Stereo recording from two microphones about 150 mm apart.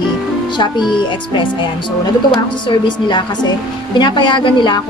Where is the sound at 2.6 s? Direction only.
30° left (ahead or behind).